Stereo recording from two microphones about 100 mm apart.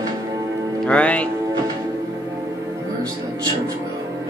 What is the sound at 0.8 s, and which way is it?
Speech, 15° left (ahead or behind).